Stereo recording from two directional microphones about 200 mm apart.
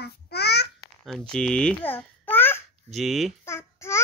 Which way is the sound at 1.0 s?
5° left (ahead or behind).